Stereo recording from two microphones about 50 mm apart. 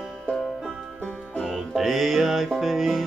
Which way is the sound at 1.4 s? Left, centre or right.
Centre.